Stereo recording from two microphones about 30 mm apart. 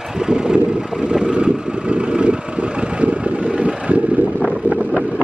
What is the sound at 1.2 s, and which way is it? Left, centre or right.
Vehicle, right.